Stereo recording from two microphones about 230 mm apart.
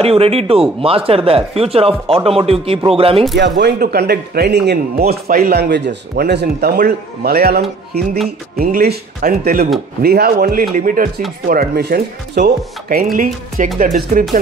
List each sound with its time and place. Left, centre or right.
0.0 s speech: right
3.3 s speech: right